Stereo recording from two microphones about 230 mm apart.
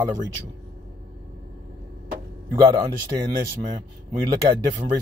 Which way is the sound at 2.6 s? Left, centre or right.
Centre.